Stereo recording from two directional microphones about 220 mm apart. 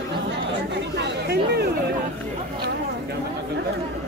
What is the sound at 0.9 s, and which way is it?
Chatter, 50° right (ahead or behind).